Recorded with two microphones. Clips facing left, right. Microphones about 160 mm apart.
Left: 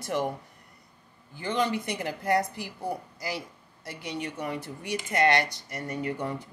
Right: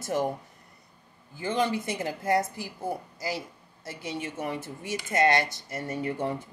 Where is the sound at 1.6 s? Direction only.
25° right (ahead or behind).